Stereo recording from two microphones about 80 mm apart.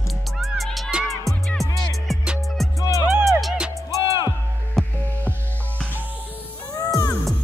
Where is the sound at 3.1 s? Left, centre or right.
Centre.